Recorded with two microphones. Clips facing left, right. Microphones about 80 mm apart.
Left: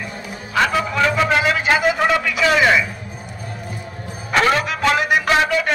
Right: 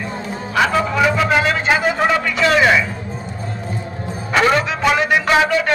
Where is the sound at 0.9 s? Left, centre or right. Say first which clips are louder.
Even; centre.